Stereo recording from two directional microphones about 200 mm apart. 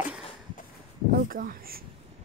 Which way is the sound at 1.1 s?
45° right (ahead or behind).